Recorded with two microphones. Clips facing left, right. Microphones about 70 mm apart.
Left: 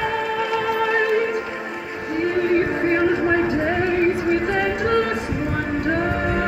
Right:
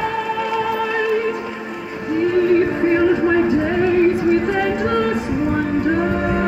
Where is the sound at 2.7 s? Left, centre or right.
Centre.